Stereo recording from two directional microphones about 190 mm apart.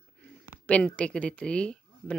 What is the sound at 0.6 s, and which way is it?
Speech, 5° left (ahead or behind).